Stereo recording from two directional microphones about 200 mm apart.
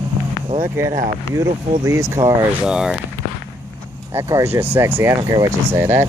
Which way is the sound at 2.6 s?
5° right (ahead or behind).